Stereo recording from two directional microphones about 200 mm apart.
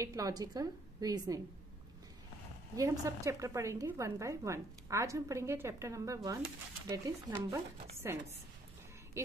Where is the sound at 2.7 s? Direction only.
15° right (ahead or behind).